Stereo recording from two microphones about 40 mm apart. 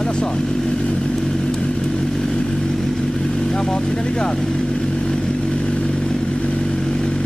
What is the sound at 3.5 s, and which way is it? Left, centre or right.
Speech, centre.